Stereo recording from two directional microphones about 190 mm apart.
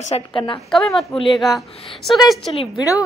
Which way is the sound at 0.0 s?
30° left (ahead or behind).